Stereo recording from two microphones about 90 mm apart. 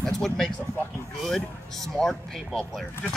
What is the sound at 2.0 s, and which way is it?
Speech, 5° left (ahead or behind).